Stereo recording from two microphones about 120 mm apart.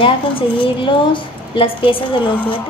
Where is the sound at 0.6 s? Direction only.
45° left (ahead or behind).